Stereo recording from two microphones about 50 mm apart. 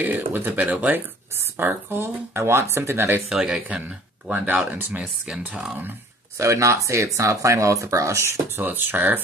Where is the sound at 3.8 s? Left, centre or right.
Right.